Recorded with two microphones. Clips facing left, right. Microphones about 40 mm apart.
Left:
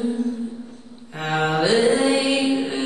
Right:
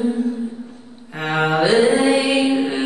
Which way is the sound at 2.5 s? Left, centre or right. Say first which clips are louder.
Right 4 dB; centre.